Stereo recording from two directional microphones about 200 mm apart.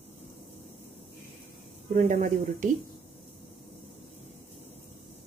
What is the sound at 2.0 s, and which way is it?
Speech, 40° right (ahead or behind).